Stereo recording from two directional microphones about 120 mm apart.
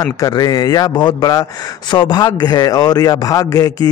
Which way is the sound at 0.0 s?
30° left (ahead or behind).